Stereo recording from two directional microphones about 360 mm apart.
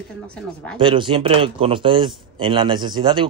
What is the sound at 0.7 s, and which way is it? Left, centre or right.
Speech, centre.